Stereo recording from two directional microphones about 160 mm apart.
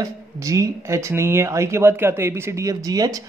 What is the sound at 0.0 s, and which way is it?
Speech, 20° right (ahead or behind).